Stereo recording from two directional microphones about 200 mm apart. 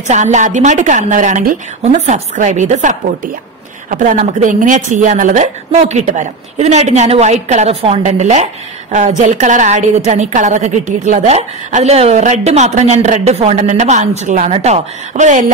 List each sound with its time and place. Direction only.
0.1 s a woman's voice: 35° right (ahead or behind)
4.2 s a woman's voice: 35° right (ahead or behind)